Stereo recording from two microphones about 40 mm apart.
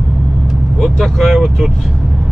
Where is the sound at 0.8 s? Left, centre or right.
Centre.